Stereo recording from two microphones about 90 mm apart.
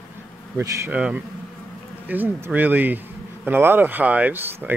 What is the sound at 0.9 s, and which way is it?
Speech, 10° right (ahead or behind).